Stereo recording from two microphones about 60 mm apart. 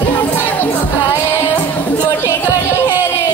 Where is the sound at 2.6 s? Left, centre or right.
Left.